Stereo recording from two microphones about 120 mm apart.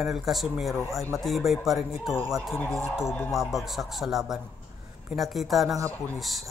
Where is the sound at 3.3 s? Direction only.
Centre (ahead or behind).